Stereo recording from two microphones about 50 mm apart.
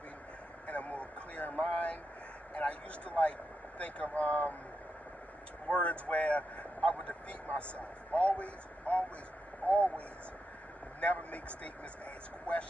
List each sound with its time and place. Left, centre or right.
0.7 s a sound: left
2.5 s speech: left
5.7 s speech: left